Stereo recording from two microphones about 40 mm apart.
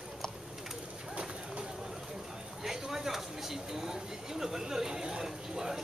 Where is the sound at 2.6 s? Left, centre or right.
Centre.